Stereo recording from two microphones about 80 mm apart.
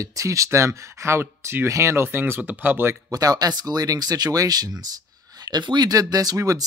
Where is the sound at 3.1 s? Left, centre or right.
Right.